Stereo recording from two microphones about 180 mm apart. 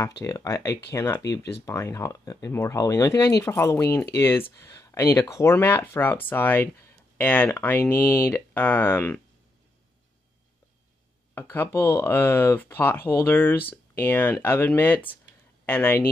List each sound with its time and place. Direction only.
0.2 s speech: 15° left (ahead or behind)
11.3 s speech: 10° left (ahead or behind)